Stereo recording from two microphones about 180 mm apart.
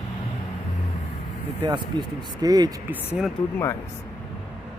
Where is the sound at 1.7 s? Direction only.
25° right (ahead or behind).